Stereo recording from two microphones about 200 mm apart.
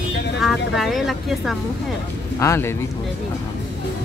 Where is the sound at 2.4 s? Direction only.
15° left (ahead or behind).